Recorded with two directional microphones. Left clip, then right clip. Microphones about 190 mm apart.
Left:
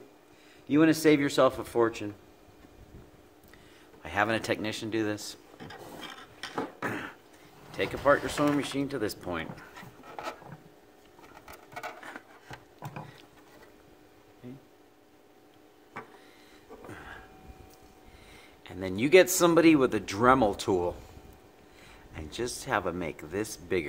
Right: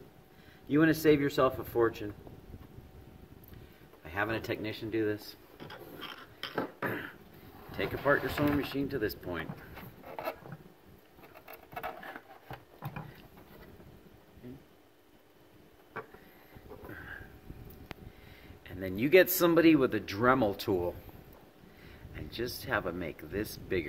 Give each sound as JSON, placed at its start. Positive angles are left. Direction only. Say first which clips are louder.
{"t": 0.7, "sound": "speech", "louder": "left 3 dB", "side_deg": 15}
{"t": 4.0, "sound": "speech", "louder": "left 6 dB", "side_deg": 35}
{"t": 6.6, "sound": "a sound", "louder": "left 2 dB", "side_deg": 15}
{"t": 7.7, "sound": "speech", "louder": "left 4 dB", "side_deg": 15}
{"t": 18.6, "sound": "a sound", "louder": "left 3 dB", "side_deg": 15}
{"t": 19.3, "sound": "speech", "louder": "left 3 dB", "side_deg": 15}
{"t": 22.1, "sound": "speech", "louder": "left 3 dB", "side_deg": 20}